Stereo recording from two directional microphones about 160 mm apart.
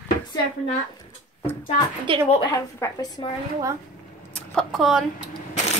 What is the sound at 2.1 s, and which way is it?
Speech, 30° right (ahead or behind).